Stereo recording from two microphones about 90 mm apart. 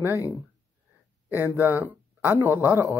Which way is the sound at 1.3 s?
25° right (ahead or behind).